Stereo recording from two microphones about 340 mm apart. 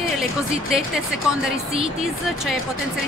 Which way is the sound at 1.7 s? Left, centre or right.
Centre.